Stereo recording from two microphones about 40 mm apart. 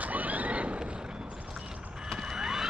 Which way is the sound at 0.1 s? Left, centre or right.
Right.